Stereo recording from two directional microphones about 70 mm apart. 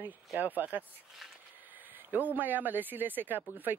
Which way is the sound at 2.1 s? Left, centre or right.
Right.